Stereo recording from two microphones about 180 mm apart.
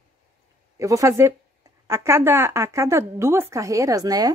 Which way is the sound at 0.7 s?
15° right (ahead or behind).